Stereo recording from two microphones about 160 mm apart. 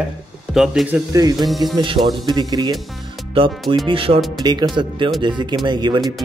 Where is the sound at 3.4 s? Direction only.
35° right (ahead or behind).